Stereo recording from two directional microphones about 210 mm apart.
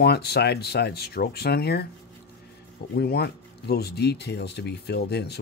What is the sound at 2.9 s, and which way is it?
Speech, 50° left (ahead or behind).